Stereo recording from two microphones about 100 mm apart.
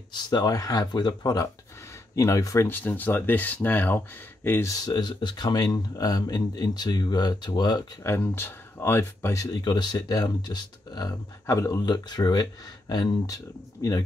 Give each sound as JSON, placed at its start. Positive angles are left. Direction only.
{"t": 0.1, "sound": "speech", "side_deg": 45}
{"t": 2.7, "sound": "speech", "side_deg": 20}
{"t": 4.7, "sound": "speech", "side_deg": 45}
{"t": 8.2, "sound": "speech", "side_deg": 20}
{"t": 9.4, "sound": "speech", "side_deg": 45}
{"t": 11.8, "sound": "speech", "side_deg": 45}